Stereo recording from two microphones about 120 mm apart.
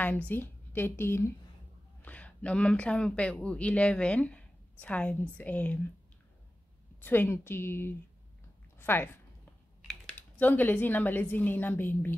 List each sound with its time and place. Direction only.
0.3 s a woman's voice: 15° left (ahead or behind)
7.0 s a woman's voice: 15° left (ahead or behind)
9.8 s typing: centre (ahead or behind)
10.4 s a woman's voice: 15° left (ahead or behind)